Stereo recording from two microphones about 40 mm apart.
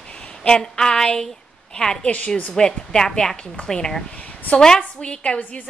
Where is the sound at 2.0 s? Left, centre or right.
Left.